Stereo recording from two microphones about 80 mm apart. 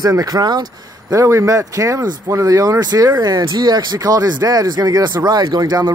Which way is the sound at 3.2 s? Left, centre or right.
Right.